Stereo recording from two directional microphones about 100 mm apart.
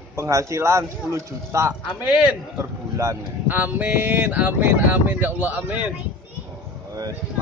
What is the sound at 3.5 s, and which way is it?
Speech, 15° right (ahead or behind).